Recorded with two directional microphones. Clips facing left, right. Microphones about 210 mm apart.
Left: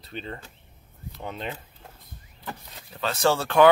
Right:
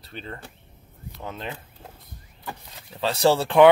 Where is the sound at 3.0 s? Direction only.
30° right (ahead or behind).